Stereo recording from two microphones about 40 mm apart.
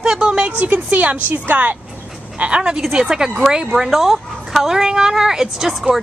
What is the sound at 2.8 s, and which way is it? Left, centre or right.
Speech, centre.